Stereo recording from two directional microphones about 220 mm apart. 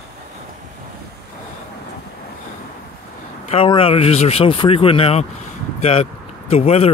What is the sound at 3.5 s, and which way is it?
Speech, 25° left (ahead or behind).